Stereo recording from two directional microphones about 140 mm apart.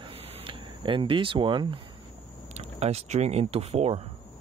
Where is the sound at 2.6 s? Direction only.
50° right (ahead or behind).